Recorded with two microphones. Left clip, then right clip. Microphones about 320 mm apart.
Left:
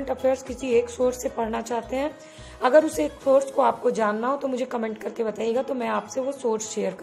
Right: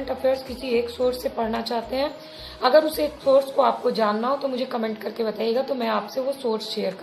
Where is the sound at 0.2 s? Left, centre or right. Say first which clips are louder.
Right 2 dB; left.